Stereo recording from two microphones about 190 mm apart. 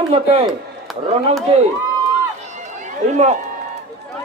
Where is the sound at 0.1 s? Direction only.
30° right (ahead or behind).